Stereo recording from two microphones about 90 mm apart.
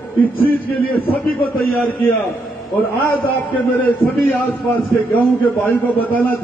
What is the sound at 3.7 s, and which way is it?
A man's voice, 20° left (ahead or behind).